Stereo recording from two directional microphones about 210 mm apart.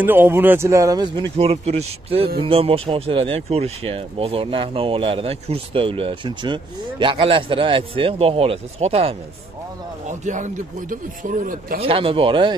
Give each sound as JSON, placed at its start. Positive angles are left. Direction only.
{"t": 0.0, "sound": "speech", "side_deg": -10}
{"t": 11.8, "sound": "speech", "side_deg": -25}